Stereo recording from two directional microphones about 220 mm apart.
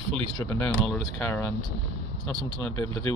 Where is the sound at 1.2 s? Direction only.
10° left (ahead or behind).